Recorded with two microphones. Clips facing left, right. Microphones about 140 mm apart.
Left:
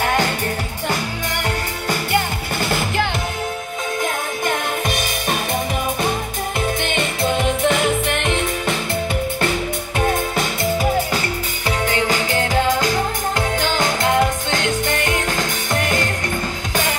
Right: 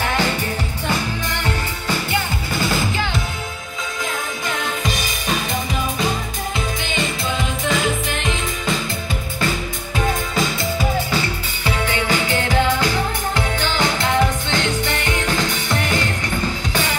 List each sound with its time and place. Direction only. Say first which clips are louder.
0.0 s music: left 2 dB; 50° left (ahead or behind)
1.9 s music: left 3 dB; 55° left (ahead or behind)
4.5 s music: left 2 dB; 55° left (ahead or behind)
6.8 s music: left 3 dB; 60° left (ahead or behind)
9.9 s music: left 1 dB; 55° left (ahead or behind)
11.6 s music: left 1 dB; 40° left (ahead or behind)